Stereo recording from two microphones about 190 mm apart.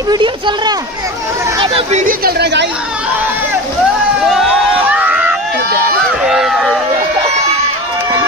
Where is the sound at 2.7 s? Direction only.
5° right (ahead or behind).